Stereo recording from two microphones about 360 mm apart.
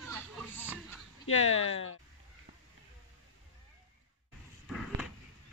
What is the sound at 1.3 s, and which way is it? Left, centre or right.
Speech, centre.